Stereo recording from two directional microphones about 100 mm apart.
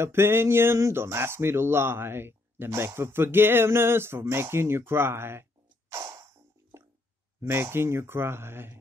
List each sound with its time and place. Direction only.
0.0 s speech: 25° right (ahead or behind)
6.7 s a sound: 25° right (ahead or behind)
7.4 s speech: 25° right (ahead or behind)